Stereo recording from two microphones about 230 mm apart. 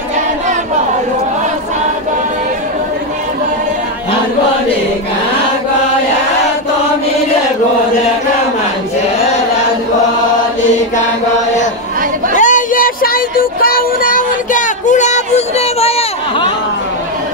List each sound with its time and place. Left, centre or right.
12.4 s child singing: left